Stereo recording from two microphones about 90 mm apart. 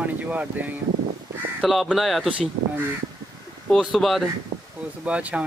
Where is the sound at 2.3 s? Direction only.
15° right (ahead or behind).